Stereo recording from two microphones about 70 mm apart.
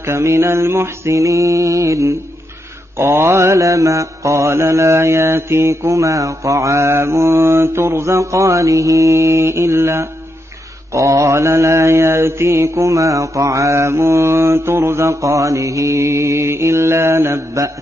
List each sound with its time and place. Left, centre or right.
0.0 s mantra: right